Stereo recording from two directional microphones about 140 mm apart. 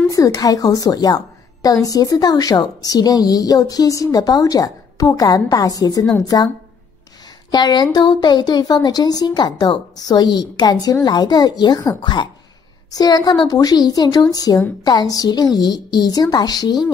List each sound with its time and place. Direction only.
0.1 s a woman's voice: 25° left (ahead or behind)
7.5 s a woman's voice: 30° left (ahead or behind)